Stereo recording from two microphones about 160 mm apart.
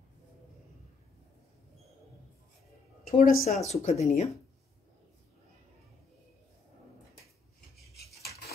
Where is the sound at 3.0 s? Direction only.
60° left (ahead or behind).